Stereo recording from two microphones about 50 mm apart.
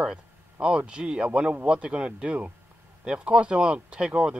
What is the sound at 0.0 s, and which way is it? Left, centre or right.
Speech, centre.